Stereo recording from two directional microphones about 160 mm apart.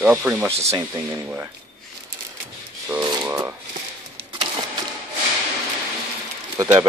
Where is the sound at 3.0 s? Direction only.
25° right (ahead or behind).